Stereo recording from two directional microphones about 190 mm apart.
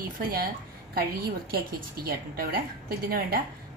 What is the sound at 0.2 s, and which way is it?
A woman's voice, 50° right (ahead or behind).